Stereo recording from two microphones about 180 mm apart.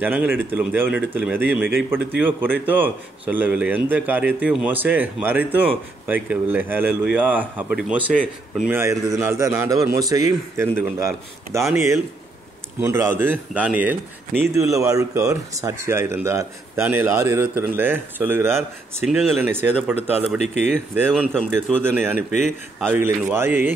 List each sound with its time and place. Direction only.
0.0 s speech: 10° right (ahead or behind)
19.0 s speech: centre (ahead or behind)
19.4 s speech: 10° right (ahead or behind)
20.4 s speech: 40° left (ahead or behind)
21.3 s speech: 5° left (ahead or behind)
21.8 s speech: 10° right (ahead or behind)